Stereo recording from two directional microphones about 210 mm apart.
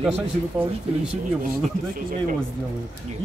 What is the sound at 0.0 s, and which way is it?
Speech, 5° right (ahead or behind).